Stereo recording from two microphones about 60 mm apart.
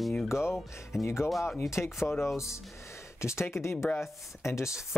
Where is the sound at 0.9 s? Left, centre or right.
Left.